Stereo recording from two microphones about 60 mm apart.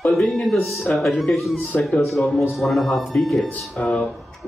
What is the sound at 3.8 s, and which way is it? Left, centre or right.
Speech, left.